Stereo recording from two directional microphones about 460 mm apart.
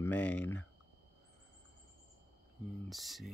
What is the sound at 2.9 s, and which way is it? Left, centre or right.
Speech, centre.